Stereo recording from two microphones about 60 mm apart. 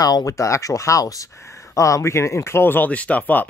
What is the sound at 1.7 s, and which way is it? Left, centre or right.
Speech, left.